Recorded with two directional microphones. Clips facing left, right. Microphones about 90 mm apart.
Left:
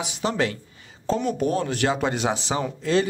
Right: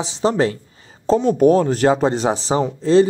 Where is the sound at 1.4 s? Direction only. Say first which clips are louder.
Right 10 dB; 40° right (ahead or behind).